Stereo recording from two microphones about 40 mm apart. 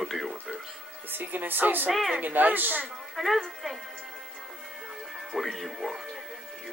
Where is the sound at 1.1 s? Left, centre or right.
Right.